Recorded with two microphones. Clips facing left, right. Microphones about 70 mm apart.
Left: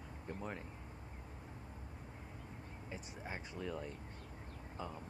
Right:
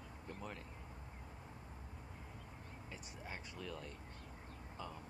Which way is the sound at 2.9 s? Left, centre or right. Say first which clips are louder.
Left 4 dB; left.